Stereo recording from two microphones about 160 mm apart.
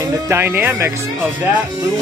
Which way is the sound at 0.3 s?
15° right (ahead or behind).